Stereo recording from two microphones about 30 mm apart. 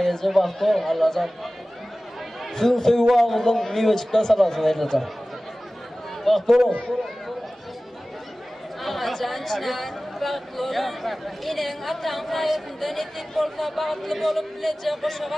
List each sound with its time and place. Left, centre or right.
0.0 s speech: centre
2.5 s speech: centre
3.2 s speech: centre
3.4 s speech: centre
6.2 s speech: centre
8.8 s speech: centre